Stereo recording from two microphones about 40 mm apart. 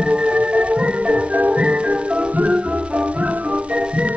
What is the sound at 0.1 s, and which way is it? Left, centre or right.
Music, right.